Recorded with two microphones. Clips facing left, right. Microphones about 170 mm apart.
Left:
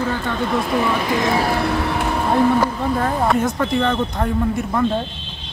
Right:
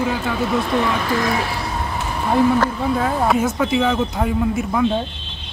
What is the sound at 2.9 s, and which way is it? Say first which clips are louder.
Speech: even; centre (ahead or behind).